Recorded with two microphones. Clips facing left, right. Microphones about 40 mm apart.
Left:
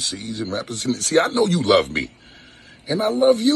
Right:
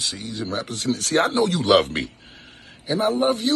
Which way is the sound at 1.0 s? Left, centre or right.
Left.